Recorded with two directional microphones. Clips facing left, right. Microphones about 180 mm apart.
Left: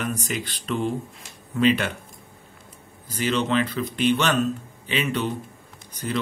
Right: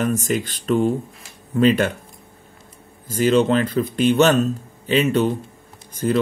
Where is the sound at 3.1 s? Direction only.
45° right (ahead or behind).